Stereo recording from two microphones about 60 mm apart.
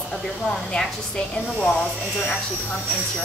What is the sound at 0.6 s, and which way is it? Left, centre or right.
A woman's voice, centre.